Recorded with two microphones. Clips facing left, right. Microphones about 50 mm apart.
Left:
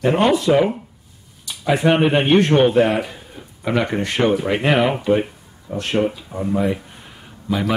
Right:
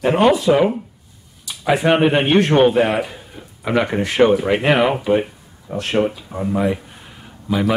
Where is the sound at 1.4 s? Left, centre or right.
Centre.